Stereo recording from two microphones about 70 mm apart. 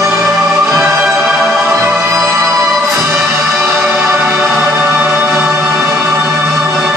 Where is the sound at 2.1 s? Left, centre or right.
Right.